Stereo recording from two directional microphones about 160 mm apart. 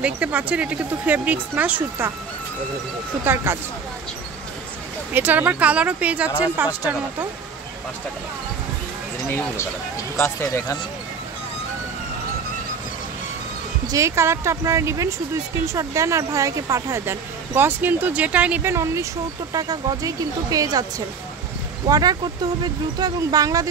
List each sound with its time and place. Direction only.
0.0 s speech: 10° right (ahead or behind)
3.3 s speech: 15° right (ahead or behind)
5.1 s speech: 10° right (ahead or behind)
10.1 s speech: 15° left (ahead or behind)
13.8 s speech: 20° right (ahead or behind)
21.8 s speech: 25° right (ahead or behind)